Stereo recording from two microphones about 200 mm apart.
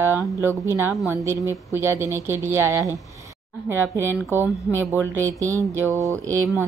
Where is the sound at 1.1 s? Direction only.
15° right (ahead or behind).